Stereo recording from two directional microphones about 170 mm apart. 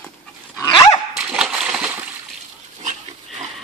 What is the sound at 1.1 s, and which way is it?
Dog, 5° right (ahead or behind).